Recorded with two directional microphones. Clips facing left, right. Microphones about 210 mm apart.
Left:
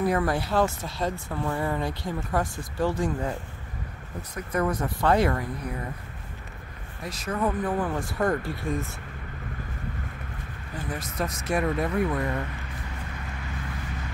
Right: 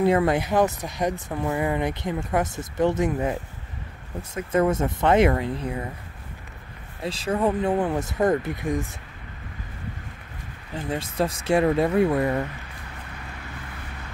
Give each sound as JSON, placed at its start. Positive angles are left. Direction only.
{"t": 0.0, "sound": "speech", "side_deg": -25}
{"t": 7.0, "sound": "speech", "side_deg": -30}
{"t": 10.7, "sound": "speech", "side_deg": -30}